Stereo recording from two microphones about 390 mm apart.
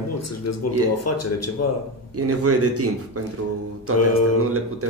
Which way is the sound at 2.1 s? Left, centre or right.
Right.